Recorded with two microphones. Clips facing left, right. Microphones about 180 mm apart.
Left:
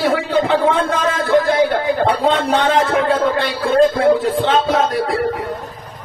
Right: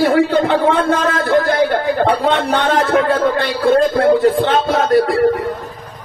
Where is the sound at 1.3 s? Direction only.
55° right (ahead or behind).